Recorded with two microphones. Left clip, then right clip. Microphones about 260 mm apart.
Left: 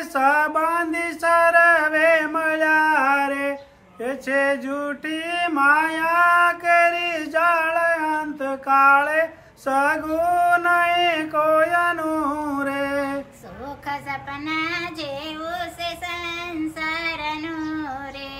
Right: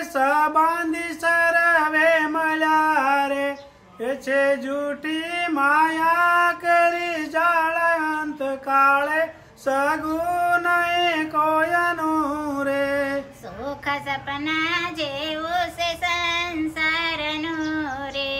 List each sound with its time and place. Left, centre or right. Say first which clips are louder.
0.1 s a sound: left 1 dB; centre
14.4 s female singing: right 2 dB; centre
15.5 s child singing: right 6 dB; centre